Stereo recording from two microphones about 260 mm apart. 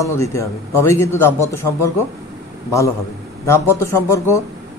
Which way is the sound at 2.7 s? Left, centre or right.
Centre.